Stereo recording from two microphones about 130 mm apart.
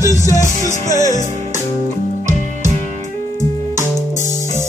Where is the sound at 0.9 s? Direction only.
20° right (ahead or behind).